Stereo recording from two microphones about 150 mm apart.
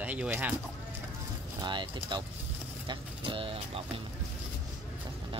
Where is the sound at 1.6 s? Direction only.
30° right (ahead or behind).